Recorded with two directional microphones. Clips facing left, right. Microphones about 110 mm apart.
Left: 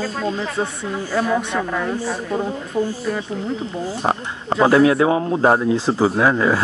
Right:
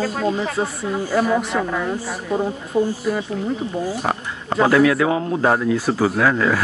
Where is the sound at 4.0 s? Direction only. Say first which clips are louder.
Left 2 dB; 25° left (ahead or behind).